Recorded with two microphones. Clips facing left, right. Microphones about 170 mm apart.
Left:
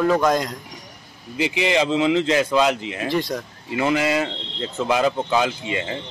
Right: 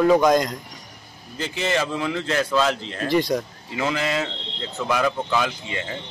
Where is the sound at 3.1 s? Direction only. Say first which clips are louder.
Right 3 dB; centre (ahead or behind).